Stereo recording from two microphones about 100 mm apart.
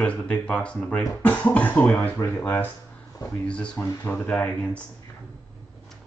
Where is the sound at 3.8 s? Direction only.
25° left (ahead or behind).